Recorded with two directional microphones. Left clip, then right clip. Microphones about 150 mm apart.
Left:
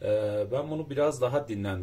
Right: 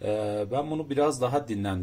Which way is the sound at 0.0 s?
55° right (ahead or behind).